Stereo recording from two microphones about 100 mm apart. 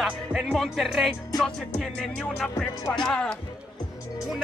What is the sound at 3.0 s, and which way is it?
Speech, 10° left (ahead or behind).